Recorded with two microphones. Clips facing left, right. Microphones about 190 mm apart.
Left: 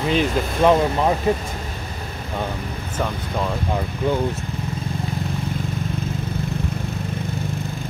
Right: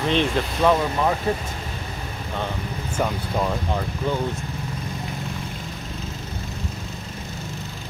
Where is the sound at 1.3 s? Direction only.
20° left (ahead or behind).